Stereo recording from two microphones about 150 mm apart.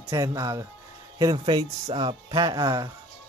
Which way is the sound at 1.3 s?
35° right (ahead or behind).